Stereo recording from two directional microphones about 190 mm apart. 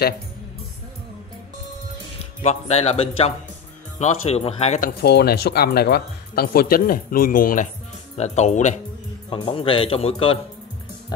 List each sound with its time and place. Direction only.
2.4 s speech: 35° left (ahead or behind)
8.2 s speech: 35° left (ahead or behind)
9.3 s a man's voice: 25° left (ahead or behind)